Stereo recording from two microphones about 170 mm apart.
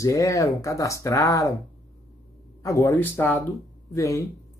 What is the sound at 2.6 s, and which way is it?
Speech, 20° left (ahead or behind).